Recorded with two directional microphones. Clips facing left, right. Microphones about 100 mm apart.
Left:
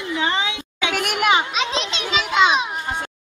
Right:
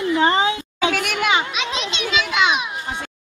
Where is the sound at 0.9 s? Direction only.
15° left (ahead or behind).